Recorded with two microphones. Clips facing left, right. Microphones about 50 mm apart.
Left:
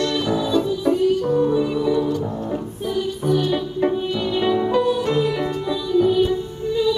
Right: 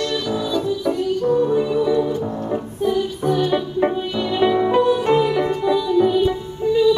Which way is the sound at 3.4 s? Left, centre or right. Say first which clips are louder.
Right 2 dB; centre.